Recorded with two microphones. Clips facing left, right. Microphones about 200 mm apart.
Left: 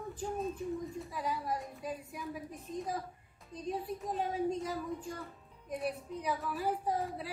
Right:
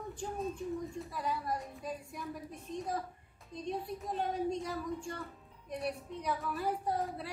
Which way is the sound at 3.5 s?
5° left (ahead or behind).